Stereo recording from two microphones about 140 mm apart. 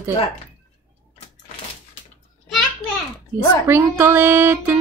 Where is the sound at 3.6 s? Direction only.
15° right (ahead or behind).